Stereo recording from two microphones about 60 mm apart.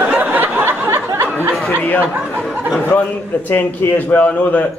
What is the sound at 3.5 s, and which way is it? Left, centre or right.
Speech, left.